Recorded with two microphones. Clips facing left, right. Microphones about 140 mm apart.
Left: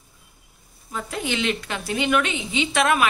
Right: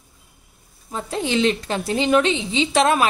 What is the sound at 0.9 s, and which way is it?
A woman's voice, 30° right (ahead or behind).